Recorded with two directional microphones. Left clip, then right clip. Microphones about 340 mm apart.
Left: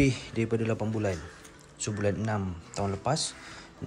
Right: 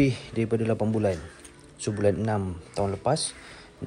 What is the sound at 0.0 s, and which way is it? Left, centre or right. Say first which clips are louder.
Speech: right 2 dB; centre.